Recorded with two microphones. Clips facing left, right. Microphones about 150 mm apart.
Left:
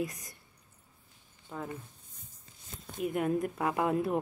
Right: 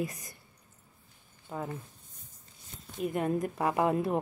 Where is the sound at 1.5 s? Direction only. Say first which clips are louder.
Right 3 dB; 5° right (ahead or behind).